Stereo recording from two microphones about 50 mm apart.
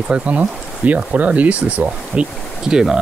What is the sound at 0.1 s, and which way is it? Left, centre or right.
Speech, right.